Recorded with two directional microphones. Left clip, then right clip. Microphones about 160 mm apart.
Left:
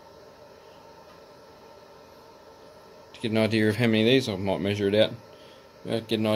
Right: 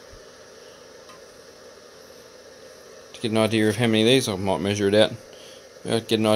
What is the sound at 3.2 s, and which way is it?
Speech, 30° right (ahead or behind).